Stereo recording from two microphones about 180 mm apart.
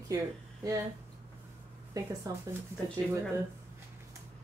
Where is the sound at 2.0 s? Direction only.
20° right (ahead or behind).